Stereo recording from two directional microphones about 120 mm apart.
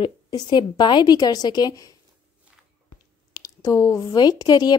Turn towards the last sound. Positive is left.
turn(degrees=35)  # may be behind; listen again after turning